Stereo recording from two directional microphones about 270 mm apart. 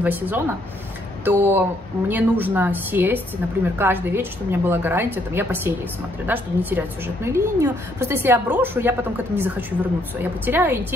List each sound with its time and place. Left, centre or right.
0.0 s a woman's voice: centre